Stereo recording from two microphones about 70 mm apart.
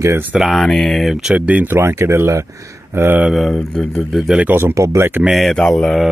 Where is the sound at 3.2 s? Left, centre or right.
Centre.